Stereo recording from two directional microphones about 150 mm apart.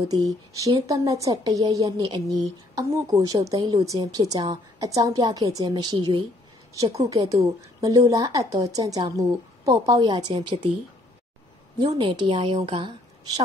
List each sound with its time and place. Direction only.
0.1 s speech: 20° right (ahead or behind)
2.7 s speech: 20° right (ahead or behind)
6.7 s a woman's voice: 20° right (ahead or behind)
11.8 s a woman's voice: 30° right (ahead or behind)